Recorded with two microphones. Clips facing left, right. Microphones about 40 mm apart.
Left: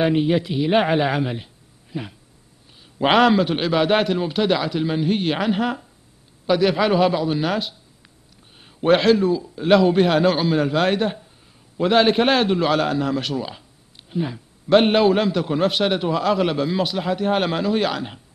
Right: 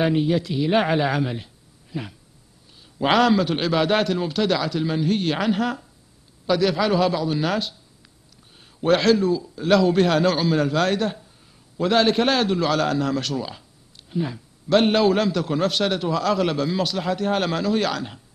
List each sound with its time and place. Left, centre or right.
0.0 s speech: left
3.0 s a man's voice: left
8.8 s a man's voice: left
14.7 s a man's voice: left